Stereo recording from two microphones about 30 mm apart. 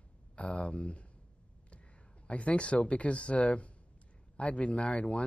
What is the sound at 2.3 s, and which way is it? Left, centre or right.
Speech, left.